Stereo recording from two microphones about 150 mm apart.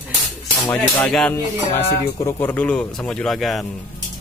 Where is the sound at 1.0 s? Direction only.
5° left (ahead or behind).